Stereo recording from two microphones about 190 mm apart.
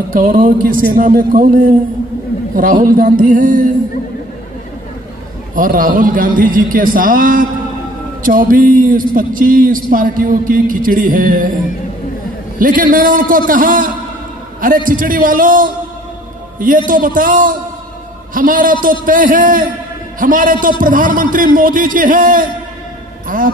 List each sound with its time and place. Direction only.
0.1 s a man's voice: 45° right (ahead or behind)
5.6 s a man's voice: 45° right (ahead or behind)
12.5 s a man's voice: 45° right (ahead or behind)